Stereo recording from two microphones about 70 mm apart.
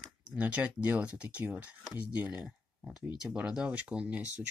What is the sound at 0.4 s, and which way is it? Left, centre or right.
Speech, right.